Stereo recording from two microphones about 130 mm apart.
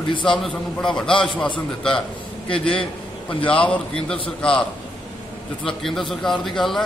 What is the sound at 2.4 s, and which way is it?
Speech, 45° left (ahead or behind).